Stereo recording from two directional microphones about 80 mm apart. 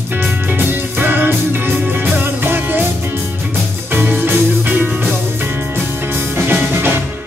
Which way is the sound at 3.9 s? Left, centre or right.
Right.